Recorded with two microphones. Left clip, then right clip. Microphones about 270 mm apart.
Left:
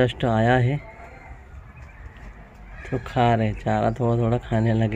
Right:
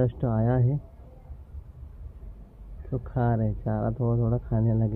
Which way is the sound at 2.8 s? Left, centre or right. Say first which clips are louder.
Left 9 dB; centre.